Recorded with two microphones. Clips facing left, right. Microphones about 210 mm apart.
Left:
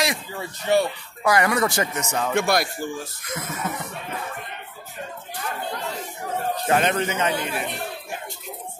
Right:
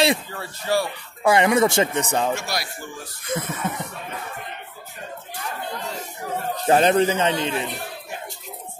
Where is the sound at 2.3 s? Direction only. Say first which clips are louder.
Left 7 dB; 55° left (ahead or behind).